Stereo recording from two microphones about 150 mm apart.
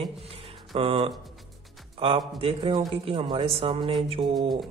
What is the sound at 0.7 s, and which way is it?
Speech, 35° right (ahead or behind).